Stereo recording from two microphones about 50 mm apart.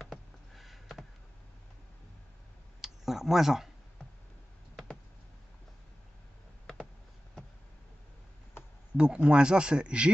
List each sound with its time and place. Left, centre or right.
0.0 s a sound: centre
2.8 s speech: centre
8.9 s speech: right